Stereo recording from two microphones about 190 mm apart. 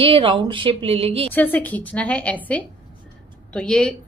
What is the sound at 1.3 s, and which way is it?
A woman's voice, 10° left (ahead or behind).